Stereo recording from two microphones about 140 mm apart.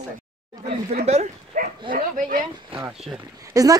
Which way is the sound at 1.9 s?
85° right.